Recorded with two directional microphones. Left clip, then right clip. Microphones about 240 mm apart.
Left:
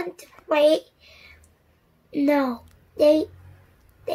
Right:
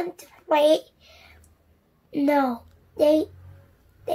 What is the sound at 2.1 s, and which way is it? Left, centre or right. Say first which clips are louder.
A child's voice: even; centre.